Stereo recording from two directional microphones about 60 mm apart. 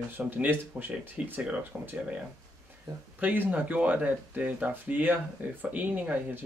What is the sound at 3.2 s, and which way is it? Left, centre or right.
Speech, right.